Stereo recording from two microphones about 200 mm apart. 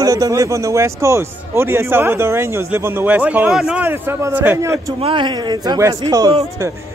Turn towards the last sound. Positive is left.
turn(degrees=-20)  # may be behind; listen again after turning